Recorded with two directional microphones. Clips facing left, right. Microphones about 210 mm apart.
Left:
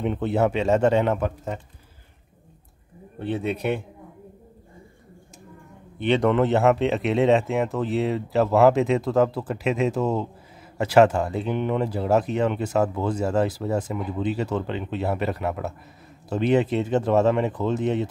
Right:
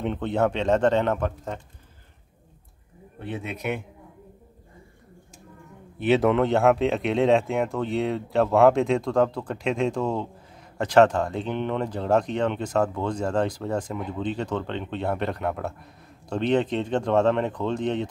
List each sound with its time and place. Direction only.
0.0 s speech: 5° left (ahead or behind)
3.2 s speech: 30° left (ahead or behind)
5.9 s speech: 5° right (ahead or behind)